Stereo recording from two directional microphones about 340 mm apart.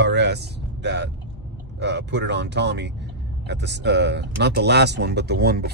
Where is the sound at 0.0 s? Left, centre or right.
Right.